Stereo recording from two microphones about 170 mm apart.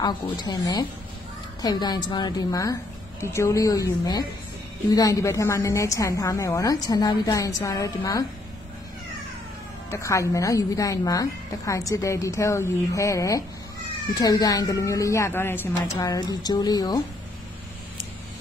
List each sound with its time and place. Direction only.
0.0 s a woman's voice: 25° left (ahead or behind)
9.8 s a woman's voice: 20° left (ahead or behind)